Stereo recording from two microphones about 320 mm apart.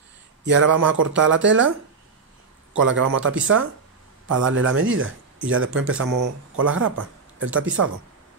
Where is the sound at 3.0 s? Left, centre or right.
Right.